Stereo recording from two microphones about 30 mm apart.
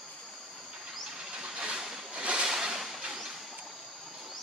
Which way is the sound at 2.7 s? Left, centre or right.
Centre.